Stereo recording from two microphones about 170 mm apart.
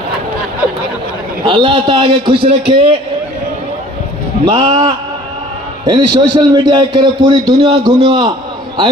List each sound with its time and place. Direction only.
1.4 s a man's voice: 30° right (ahead or behind)
4.5 s a man's voice: 25° right (ahead or behind)